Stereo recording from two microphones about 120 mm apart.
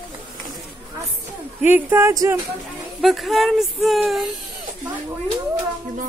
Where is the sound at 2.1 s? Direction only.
30° right (ahead or behind).